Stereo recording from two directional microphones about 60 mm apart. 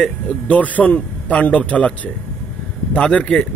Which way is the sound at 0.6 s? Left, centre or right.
Left.